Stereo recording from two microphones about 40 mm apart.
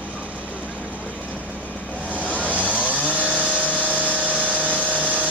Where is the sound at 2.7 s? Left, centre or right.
Left.